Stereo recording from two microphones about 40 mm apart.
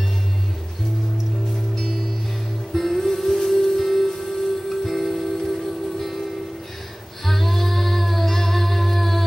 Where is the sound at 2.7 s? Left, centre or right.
Centre.